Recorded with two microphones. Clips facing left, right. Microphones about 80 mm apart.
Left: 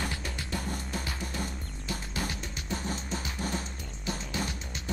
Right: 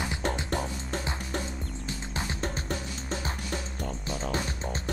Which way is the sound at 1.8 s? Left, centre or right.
Right.